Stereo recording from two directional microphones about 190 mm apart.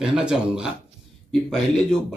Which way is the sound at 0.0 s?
5° right (ahead or behind).